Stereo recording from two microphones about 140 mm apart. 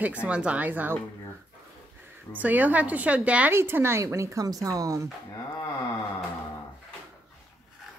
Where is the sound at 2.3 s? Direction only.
10° right (ahead or behind).